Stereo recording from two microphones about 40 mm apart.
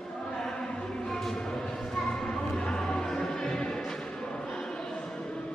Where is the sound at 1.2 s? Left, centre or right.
Centre.